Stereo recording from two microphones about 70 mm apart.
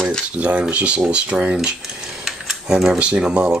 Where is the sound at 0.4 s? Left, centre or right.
Centre.